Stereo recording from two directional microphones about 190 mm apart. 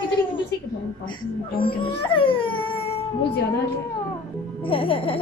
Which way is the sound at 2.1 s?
25° left (ahead or behind).